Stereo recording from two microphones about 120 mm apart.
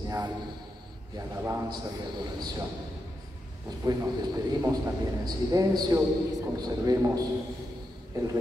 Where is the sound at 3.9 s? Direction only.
35° right (ahead or behind).